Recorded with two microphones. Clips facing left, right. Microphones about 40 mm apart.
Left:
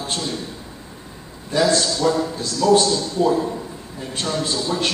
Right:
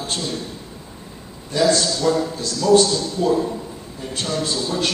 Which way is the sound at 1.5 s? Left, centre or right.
Centre.